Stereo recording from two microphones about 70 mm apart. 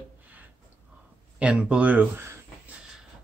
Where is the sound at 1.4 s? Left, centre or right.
Centre.